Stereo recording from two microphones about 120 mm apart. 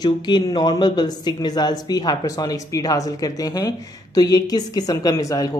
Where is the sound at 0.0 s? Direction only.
35° left (ahead or behind).